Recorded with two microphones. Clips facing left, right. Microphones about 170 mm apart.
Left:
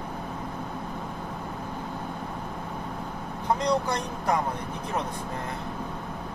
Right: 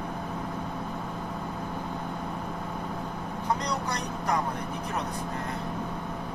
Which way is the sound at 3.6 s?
25° left (ahead or behind).